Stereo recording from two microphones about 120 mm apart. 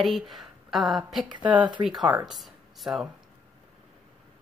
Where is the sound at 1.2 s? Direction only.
40° right (ahead or behind).